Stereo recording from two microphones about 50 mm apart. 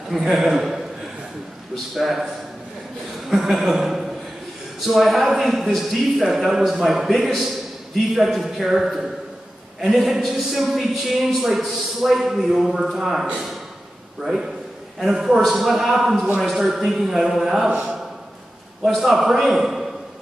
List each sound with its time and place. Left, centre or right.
0.1 s a man's voice: centre
2.0 s a man's voice: centre
3.3 s a man's voice: centre
17.6 s a man's voice: centre
18.9 s a man's voice: centre